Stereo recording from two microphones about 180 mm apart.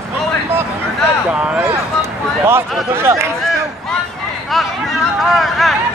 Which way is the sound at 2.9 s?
15° right (ahead or behind).